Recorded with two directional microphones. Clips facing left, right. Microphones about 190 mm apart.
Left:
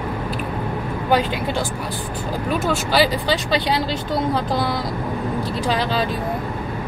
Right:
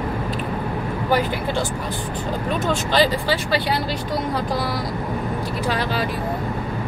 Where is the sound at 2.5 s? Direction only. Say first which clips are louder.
Left 2 dB; 10° left (ahead or behind).